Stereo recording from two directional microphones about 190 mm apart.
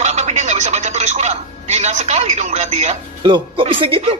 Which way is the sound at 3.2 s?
25° right (ahead or behind).